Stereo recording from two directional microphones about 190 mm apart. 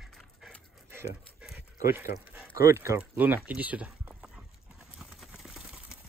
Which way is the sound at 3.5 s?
10° right (ahead or behind).